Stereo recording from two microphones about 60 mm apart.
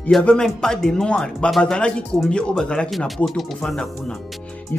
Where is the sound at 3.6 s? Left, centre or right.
Centre.